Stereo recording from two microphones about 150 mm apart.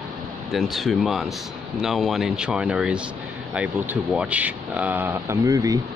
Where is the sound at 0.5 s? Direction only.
Centre (ahead or behind).